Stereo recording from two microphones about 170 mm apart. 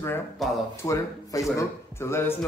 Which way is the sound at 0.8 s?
20° left (ahead or behind).